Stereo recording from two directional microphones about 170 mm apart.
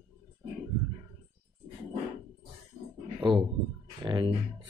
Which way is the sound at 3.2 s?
30° right (ahead or behind).